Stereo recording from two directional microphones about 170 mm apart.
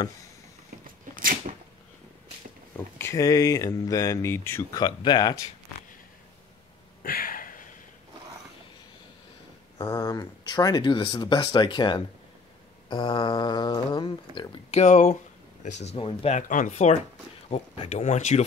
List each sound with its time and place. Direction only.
1.1 s a sound: 55° right (ahead or behind)
3.0 s speech: 20° left (ahead or behind)
7.0 s a sound: 55° left (ahead or behind)
9.8 s speech: 20° left (ahead or behind)
14.8 s speech: 45° left (ahead or behind)
16.3 s speech: 50° left (ahead or behind)